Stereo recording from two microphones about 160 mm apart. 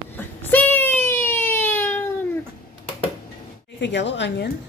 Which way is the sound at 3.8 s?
90° left.